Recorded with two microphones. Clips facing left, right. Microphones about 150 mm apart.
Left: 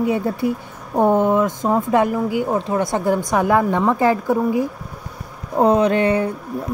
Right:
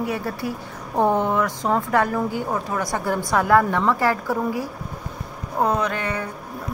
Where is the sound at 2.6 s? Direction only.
25° left (ahead or behind).